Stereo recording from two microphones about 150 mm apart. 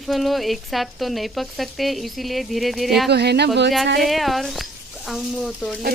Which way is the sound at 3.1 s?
90° right.